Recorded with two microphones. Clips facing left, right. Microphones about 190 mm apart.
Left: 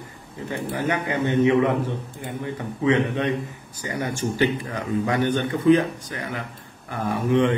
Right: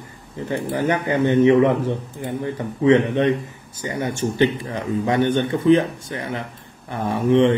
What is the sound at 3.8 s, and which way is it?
Speech, 25° right (ahead or behind).